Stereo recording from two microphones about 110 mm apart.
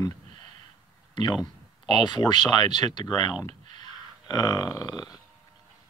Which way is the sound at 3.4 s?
40° left (ahead or behind).